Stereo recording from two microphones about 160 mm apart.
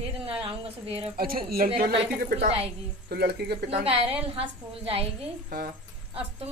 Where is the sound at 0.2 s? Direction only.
35° right (ahead or behind).